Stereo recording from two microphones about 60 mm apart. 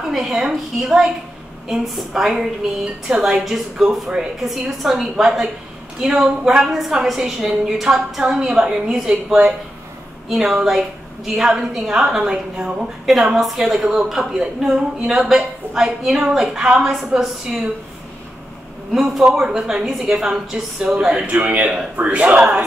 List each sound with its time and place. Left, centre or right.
0.1 s a woman's voice: centre
13.1 s a woman's voice: centre
18.9 s a woman's voice: centre
19.2 s a woman's voice: centre
21.3 s a man's voice: right